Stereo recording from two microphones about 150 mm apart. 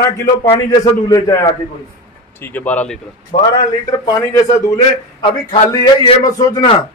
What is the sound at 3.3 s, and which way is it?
Speech, 50° left (ahead or behind).